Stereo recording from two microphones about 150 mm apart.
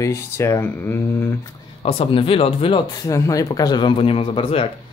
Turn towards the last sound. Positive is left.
turn(degrees=35)  # may be behind; listen again after turning